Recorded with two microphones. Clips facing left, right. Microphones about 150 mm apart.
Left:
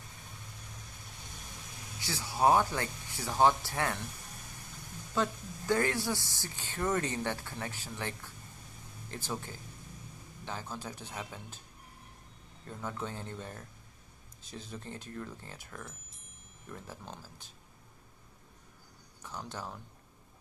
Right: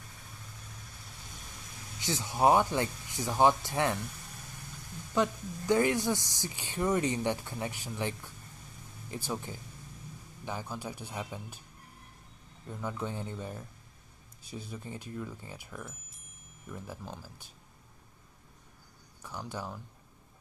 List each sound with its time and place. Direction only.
2.0 s speech: 20° right (ahead or behind)
5.1 s speech: 15° right (ahead or behind)
12.6 s speech: 5° right (ahead or behind)
19.2 s speech: 10° right (ahead or behind)